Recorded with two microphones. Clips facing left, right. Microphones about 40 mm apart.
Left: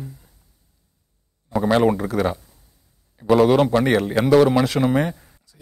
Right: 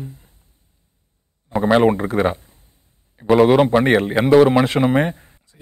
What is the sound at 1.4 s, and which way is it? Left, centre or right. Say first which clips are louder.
Speech: right 2 dB; right.